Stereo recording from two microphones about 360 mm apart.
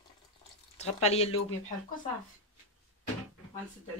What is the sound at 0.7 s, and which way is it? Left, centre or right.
Speech, centre.